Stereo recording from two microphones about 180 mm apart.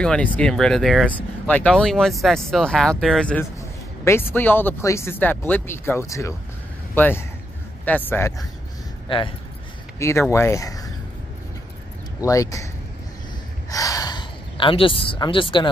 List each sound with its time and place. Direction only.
0.0 s speech: 5° left (ahead or behind)
9.9 s speech: 15° left (ahead or behind)
12.3 s speech: 20° left (ahead or behind)
13.7 s a sound: 20° left (ahead or behind)